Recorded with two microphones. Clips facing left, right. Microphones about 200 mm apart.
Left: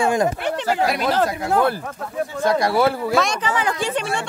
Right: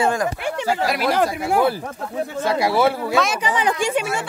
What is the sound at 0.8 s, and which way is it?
Speech, 5° right (ahead or behind).